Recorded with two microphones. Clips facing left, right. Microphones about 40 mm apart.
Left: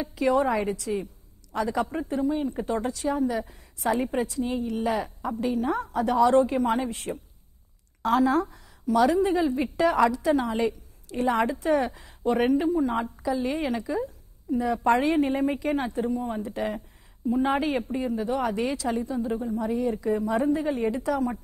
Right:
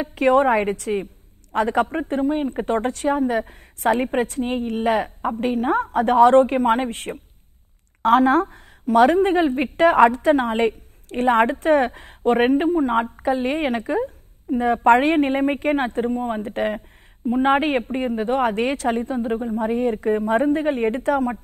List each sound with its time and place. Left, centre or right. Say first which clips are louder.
0.0 s a woman's voice: right 6 dB; right